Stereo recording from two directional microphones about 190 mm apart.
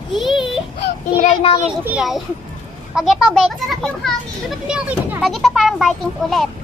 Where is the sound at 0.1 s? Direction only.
Centre (ahead or behind).